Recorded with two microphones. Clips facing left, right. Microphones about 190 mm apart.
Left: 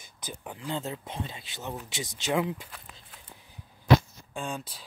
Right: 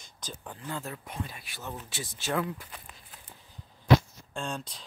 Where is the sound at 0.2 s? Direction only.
15° left (ahead or behind).